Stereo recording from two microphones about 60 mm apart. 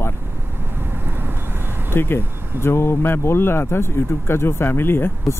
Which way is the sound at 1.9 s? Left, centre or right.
Left.